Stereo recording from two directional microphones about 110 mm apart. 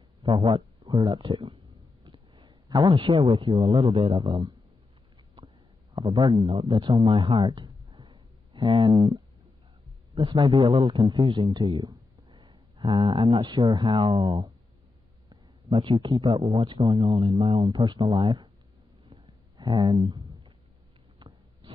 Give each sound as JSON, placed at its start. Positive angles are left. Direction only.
{"t": 0.2, "sound": "speech", "side_deg": -45}
{"t": 2.0, "sound": "a sound", "side_deg": -45}
{"t": 3.0, "sound": "speech", "side_deg": -50}
{"t": 4.2, "sound": "speech", "side_deg": -40}
{"t": 5.9, "sound": "speech", "side_deg": -45}
{"t": 15.7, "sound": "speech", "side_deg": -45}
{"t": 19.0, "sound": "a sound", "side_deg": -40}